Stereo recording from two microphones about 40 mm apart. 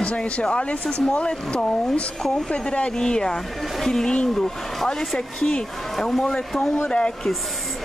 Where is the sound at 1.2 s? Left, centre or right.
Left.